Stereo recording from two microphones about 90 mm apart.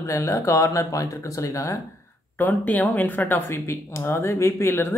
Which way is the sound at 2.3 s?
20° left (ahead or behind).